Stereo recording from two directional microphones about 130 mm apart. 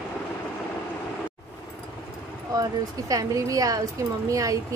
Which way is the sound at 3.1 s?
25° right (ahead or behind).